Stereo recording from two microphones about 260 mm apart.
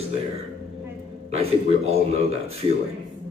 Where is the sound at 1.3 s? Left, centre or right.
Right.